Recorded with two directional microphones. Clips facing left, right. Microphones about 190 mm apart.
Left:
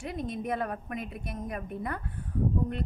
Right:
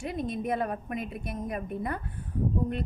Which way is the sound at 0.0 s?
20° right (ahead or behind).